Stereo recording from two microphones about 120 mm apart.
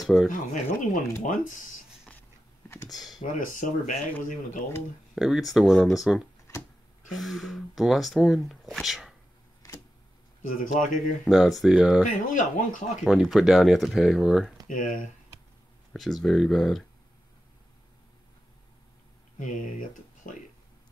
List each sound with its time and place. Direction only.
0.0 s speech: centre (ahead or behind)
0.3 s speech: 90° left
3.2 s speech: 90° left
5.1 s speech: centre (ahead or behind)
10.8 s speech: 90° left
11.2 s speech: centre (ahead or behind)
12.1 s speech: 90° left
13.0 s speech: 5° right (ahead or behind)
14.7 s speech: 90° left
15.9 s speech: centre (ahead or behind)
19.4 s speech: 90° left